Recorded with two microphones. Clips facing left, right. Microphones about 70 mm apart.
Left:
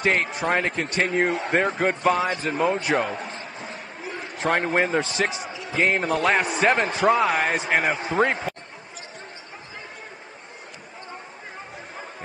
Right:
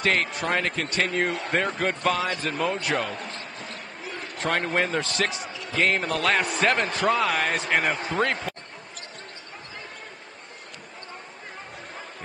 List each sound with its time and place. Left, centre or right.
0.0 s speech: centre
0.6 s speech: centre
0.8 s speech: centre
2.7 s basketball bounce: centre
4.8 s speech: centre